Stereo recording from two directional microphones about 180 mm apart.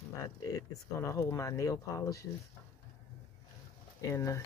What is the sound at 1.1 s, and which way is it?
Speech, 15° left (ahead or behind).